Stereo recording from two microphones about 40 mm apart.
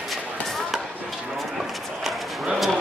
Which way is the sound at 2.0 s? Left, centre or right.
Centre.